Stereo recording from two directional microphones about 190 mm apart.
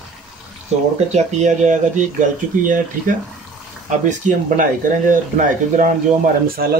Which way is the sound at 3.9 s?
40° right (ahead or behind).